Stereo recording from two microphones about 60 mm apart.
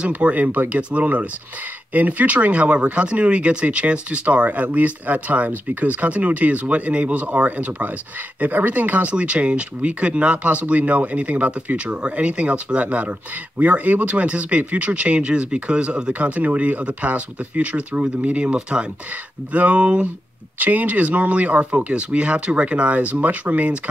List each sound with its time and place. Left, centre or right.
0.1 s speech: right